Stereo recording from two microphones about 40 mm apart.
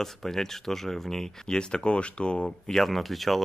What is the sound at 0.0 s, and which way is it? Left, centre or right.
Speech, centre.